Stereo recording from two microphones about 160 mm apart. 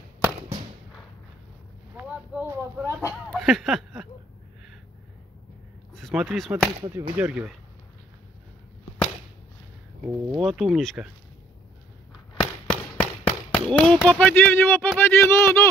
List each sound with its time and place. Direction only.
0.4 s fireworks: 40° right (ahead or behind)
2.0 s a sound: 10° right (ahead or behind)
3.3 s a sound: centre (ahead or behind)
5.9 s speech: centre (ahead or behind)
10.0 s speech: centre (ahead or behind)
12.4 s firecracker: 10° left (ahead or behind)
13.7 s speech: 5° left (ahead or behind)